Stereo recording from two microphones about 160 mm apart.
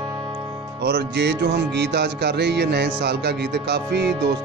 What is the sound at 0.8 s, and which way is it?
Music, 90° right.